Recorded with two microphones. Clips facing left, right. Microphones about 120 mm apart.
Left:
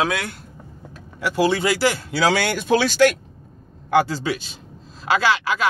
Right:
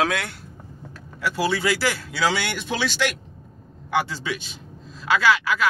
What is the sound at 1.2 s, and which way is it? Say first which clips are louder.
Speech: left 4 dB; 20° left (ahead or behind).